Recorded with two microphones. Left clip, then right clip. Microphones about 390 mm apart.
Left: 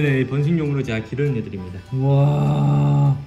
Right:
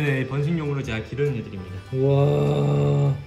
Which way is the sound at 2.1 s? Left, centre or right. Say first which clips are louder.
Left 1 dB; left.